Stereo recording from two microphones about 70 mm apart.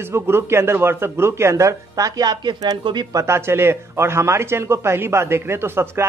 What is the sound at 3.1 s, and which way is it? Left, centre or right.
A man's voice, right.